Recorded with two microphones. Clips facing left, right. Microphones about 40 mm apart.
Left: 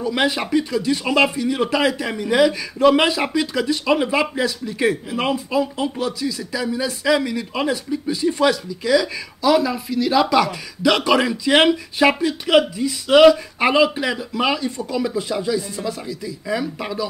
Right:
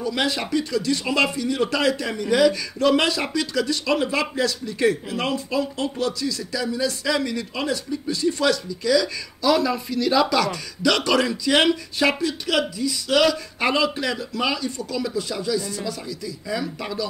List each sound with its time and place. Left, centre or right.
0.0 s speech: centre